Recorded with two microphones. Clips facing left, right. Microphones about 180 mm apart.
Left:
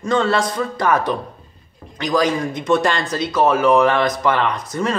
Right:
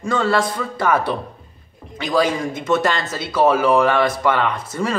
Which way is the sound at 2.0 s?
5° right (ahead or behind).